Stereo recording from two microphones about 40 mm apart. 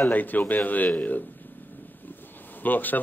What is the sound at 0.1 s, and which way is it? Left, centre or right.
Speech, left.